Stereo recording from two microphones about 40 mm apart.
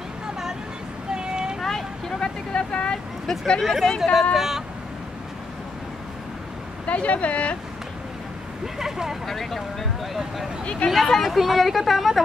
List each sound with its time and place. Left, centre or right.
1.1 s vehicle: centre
1.6 s vehicle: centre
2.1 s vehicle: left
3.6 s speech: centre
6.9 s speech: left
8.7 s speech: centre
9.2 s speech: centre
10.6 s speech: left
10.9 s speech: centre